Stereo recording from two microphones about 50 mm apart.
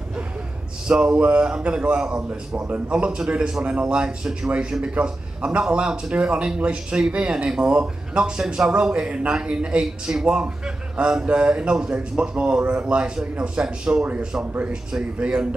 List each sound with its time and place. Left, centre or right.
0.8 s a man's voice: centre